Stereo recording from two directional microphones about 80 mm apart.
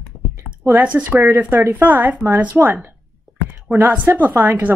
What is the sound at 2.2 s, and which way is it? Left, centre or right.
Speech, centre.